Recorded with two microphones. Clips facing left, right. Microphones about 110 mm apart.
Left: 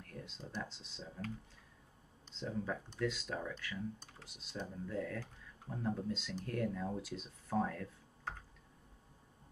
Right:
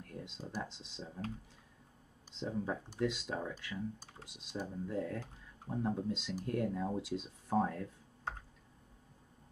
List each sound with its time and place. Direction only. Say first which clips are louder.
0.1 s a sound: right 2 dB; 20° right (ahead or behind)
0.6 s speech: right 2 dB; 15° right (ahead or behind)
2.4 s speech: right 2 dB; 25° right (ahead or behind)